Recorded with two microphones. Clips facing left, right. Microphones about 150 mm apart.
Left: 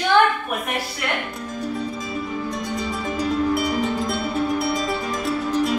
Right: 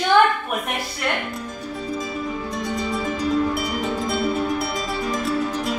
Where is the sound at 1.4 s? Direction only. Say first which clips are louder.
Left 3 dB; centre (ahead or behind).